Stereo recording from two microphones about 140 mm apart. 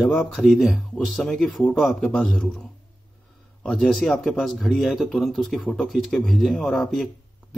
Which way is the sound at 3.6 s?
5° left (ahead or behind).